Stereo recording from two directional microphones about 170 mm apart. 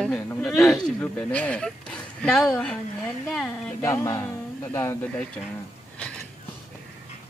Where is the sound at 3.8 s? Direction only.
15° left (ahead or behind).